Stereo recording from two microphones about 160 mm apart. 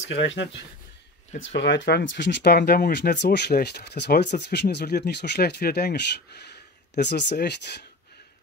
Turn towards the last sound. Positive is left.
turn(degrees=90)